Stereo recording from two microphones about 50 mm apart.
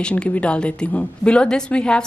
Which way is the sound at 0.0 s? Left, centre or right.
Left.